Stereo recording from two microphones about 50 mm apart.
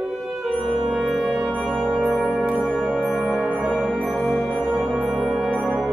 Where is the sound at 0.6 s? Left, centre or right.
Centre.